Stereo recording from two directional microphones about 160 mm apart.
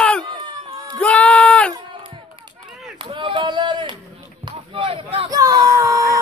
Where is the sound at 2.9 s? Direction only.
35° right (ahead or behind).